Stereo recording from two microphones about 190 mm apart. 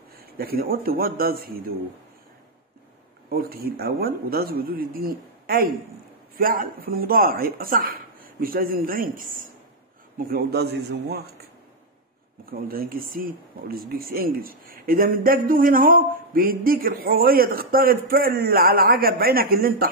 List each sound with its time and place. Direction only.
0.4 s speech: 55° right (ahead or behind)
3.3 s a man's voice: 50° right (ahead or behind)
12.4 s speech: 50° right (ahead or behind)